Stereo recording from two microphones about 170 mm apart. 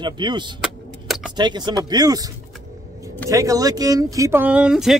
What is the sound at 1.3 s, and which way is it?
Speech, 25° right (ahead or behind).